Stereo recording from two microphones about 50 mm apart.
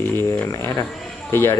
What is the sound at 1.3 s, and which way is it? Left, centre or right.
Speech, left.